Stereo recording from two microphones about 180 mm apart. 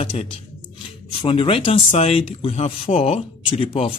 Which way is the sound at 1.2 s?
30° left (ahead or behind).